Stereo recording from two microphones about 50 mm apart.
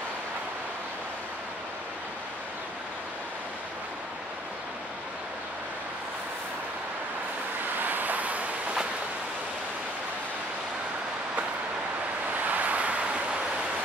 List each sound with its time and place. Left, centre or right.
7.8 s vehicle: right
12.4 s vehicle: right